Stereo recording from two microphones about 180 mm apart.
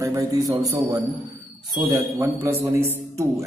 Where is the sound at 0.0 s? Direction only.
20° right (ahead or behind).